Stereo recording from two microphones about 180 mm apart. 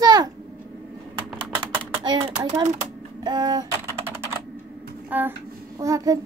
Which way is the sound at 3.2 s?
25° right (ahead or behind).